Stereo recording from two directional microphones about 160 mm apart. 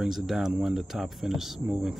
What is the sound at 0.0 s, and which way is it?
Speech, 5° right (ahead or behind).